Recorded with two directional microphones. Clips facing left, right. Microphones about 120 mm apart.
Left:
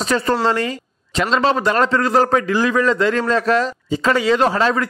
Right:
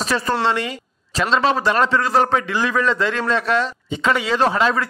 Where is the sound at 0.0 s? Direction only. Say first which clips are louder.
Left 2 dB; 30° left (ahead or behind).